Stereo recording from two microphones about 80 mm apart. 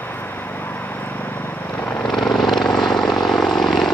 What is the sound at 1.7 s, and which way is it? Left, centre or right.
Vehicle, left.